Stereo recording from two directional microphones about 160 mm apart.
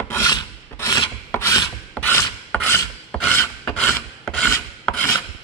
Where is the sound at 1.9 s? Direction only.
10° left (ahead or behind).